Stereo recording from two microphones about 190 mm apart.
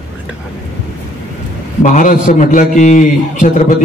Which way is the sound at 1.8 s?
45° left (ahead or behind).